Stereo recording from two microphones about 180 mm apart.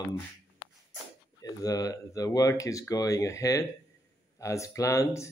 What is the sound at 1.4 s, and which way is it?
Speech, 20° left (ahead or behind).